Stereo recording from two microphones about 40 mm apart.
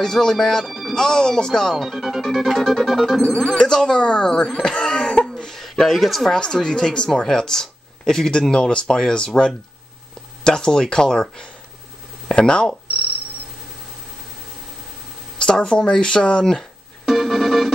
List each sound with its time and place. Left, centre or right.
0.0 s speech: centre
0.7 s music: centre
0.9 s speech: centre
1.9 s music: centre
3.5 s speech: centre
5.6 s speech: centre
6.3 s speech: centre
15.3 s speech: centre
17.0 s music: centre